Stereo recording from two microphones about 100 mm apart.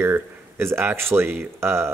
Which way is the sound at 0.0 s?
25° right (ahead or behind).